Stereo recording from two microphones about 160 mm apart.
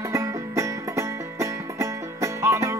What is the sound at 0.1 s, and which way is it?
Music, 20° right (ahead or behind).